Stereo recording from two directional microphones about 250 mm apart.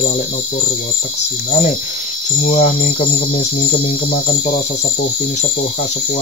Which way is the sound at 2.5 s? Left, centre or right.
Left.